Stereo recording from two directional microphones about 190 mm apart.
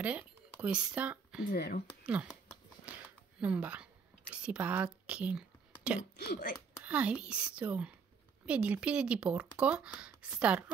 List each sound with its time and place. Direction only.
0.0 s speech: 10° right (ahead or behind)
1.5 s speech: 55° left (ahead or behind)
2.9 s a sound: 5° right (ahead or behind)
3.3 s speech: 5° right (ahead or behind)
6.1 s speech: 55° left (ahead or behind)
6.8 s speech: 5° right (ahead or behind)